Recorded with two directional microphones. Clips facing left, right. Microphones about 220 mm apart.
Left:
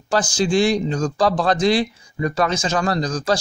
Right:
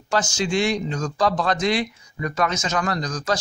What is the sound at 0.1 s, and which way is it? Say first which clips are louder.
A man's voice: left 4 dB; 35° left (ahead or behind).